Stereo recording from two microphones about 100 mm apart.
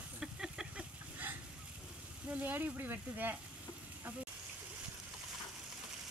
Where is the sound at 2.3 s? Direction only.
20° right (ahead or behind).